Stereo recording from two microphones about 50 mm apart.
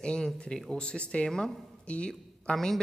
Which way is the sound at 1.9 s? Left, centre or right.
Left.